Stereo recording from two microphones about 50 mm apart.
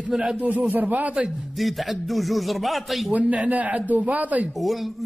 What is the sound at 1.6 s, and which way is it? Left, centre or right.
Speech, centre.